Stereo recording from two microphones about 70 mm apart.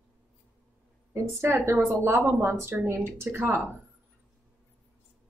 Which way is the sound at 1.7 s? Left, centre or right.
Right.